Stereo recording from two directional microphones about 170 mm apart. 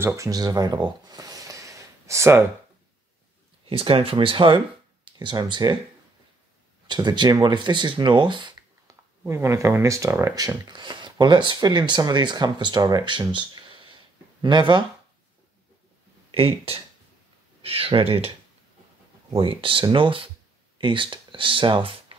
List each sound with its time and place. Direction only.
0.0 s speech: 15° right (ahead or behind)
3.6 s speech: 30° right (ahead or behind)
6.9 s speech: 25° right (ahead or behind)
9.2 s speech: 15° right (ahead or behind)
16.3 s speech: 35° right (ahead or behind)
19.3 s speech: 30° right (ahead or behind)